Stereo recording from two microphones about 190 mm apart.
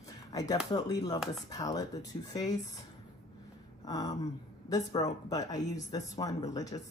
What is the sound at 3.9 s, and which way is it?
Speech, 20° left (ahead or behind).